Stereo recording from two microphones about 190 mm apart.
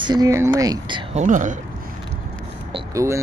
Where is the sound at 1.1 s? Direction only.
40° right (ahead or behind).